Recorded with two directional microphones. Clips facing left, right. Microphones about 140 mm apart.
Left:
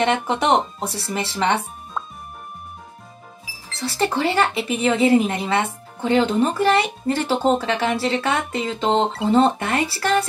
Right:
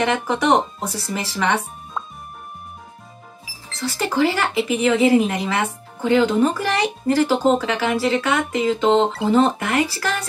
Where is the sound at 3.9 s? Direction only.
30° left (ahead or behind).